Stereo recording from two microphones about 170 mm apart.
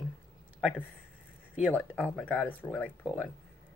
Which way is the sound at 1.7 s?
10° left (ahead or behind).